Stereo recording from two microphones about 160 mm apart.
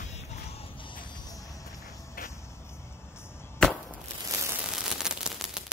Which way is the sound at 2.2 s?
65° left (ahead or behind).